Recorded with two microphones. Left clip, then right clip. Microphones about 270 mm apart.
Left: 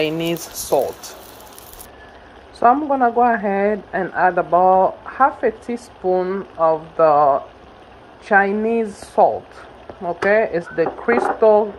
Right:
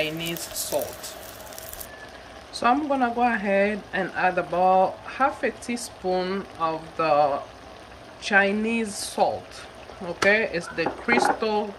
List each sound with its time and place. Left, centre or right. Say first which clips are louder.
0.0 s speech: left 7 dB; centre
2.6 s speech: left 7 dB; centre